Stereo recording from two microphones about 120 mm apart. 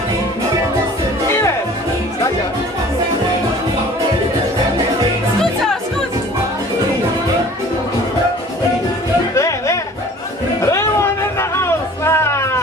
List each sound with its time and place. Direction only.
9.3 s music: 25° left (ahead or behind)